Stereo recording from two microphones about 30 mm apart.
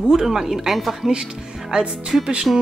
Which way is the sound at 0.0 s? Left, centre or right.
Centre.